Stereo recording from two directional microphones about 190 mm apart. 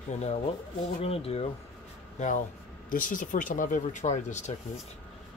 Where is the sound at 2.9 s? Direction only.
45° left (ahead or behind).